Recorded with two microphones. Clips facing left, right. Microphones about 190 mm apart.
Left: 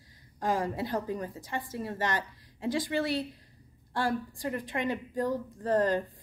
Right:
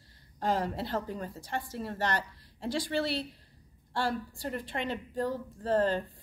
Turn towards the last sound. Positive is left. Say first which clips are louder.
# left 1 dB
turn(degrees=15)  # may be behind; listen again after turning